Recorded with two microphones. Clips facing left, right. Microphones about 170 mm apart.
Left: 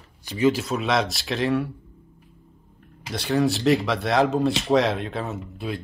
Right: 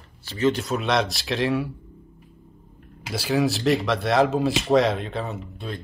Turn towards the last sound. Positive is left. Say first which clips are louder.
# left 3 dB
turn(degrees=5)  # may be behind; listen again after turning